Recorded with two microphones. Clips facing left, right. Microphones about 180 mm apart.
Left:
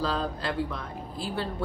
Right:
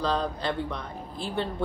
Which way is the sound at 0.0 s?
5° left (ahead or behind).